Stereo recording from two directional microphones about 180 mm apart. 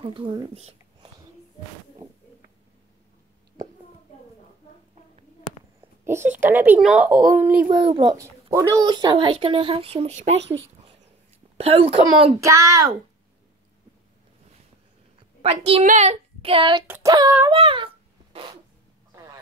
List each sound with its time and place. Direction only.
0.0 s speech: 30° right (ahead or behind)
6.3 s speech: 10° right (ahead or behind)
7.6 s a woman's voice: 30° right (ahead or behind)
8.2 s speech: 15° right (ahead or behind); by 10.4 s 35° right (ahead or behind)
11.5 s a woman's voice: 35° right (ahead or behind)
12.4 s speech: 15° right (ahead or behind)
15.4 s a woman's voice: 35° right (ahead or behind)
16.8 s speech: 15° right (ahead or behind)
17.5 s speech: 30° right (ahead or behind)
18.3 s zipper: 25° right (ahead or behind)